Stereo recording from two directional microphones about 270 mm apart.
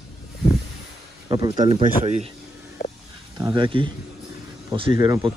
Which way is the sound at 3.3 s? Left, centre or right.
Centre.